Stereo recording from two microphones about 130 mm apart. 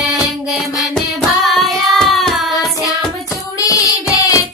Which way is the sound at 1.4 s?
Centre (ahead or behind).